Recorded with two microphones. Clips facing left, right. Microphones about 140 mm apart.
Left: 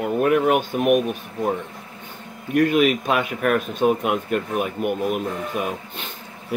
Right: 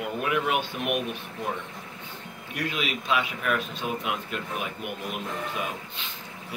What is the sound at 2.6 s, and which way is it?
Speech, 50° left (ahead or behind).